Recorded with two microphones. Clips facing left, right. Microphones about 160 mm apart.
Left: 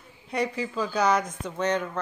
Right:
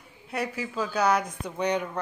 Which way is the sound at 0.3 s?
5° right (ahead or behind).